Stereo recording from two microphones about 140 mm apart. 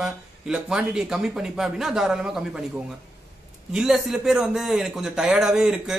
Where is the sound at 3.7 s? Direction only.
Centre (ahead or behind).